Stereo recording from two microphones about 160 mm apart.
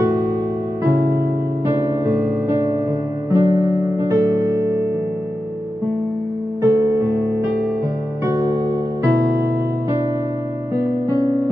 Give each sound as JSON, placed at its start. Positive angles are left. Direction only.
{"t": 1.7, "sound": "music", "side_deg": -15}
{"t": 6.6, "sound": "music", "side_deg": -20}
{"t": 8.3, "sound": "music", "side_deg": -20}
{"t": 11.1, "sound": "music", "side_deg": -20}